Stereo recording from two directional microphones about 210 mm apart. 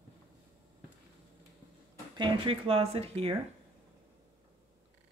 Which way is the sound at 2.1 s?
25° right (ahead or behind).